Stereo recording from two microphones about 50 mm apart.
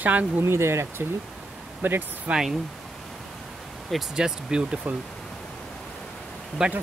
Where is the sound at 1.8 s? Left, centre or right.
Right.